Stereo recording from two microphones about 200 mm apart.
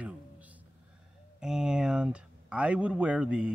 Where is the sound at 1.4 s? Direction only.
5° right (ahead or behind).